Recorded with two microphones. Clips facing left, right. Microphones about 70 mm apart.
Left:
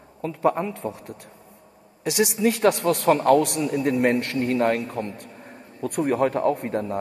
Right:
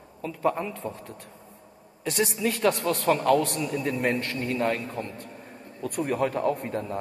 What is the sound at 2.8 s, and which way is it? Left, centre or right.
A man's voice, left.